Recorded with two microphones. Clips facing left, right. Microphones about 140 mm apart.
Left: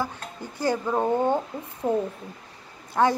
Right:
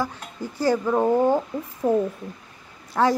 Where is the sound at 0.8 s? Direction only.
5° right (ahead or behind).